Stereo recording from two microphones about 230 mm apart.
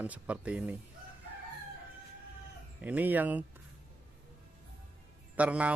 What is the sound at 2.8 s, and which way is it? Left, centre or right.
Speech, centre.